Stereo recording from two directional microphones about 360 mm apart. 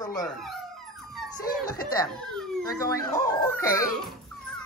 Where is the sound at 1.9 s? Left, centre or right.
Centre.